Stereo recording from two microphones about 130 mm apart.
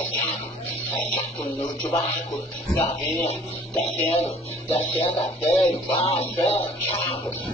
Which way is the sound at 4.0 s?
55° left (ahead or behind).